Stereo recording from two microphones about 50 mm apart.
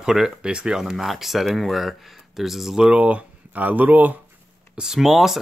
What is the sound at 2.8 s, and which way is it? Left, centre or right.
Speech, right.